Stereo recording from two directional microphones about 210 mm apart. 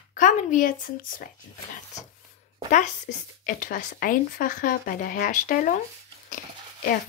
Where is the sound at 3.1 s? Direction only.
40° left (ahead or behind).